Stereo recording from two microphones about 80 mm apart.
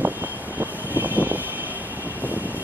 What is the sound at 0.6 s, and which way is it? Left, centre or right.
Vehicle, right.